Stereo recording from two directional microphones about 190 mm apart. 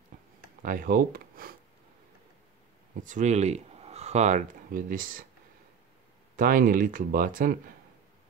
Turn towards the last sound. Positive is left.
turn(degrees=-50)  # may be behind; listen again after turning